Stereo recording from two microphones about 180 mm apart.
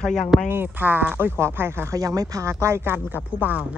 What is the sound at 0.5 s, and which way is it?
Speech, 10° right (ahead or behind).